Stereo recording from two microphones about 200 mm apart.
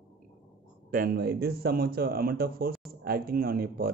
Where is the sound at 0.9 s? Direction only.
50° right (ahead or behind).